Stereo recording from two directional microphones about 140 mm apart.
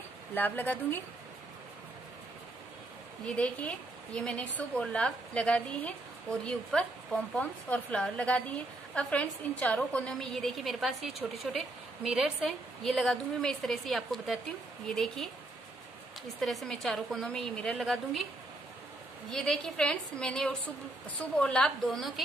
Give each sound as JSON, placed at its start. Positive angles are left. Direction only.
{"t": 0.3, "sound": "a woman's voice", "side_deg": 15}
{"t": 3.3, "sound": "a woman's voice", "side_deg": 10}
{"t": 16.3, "sound": "a woman's voice", "side_deg": 0}
{"t": 19.3, "sound": "a woman's voice", "side_deg": 5}